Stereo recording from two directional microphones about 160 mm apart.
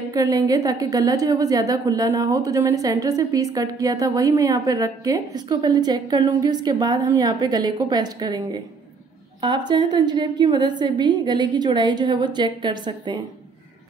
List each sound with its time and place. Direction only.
0.1 s a woman's voice: 20° right (ahead or behind)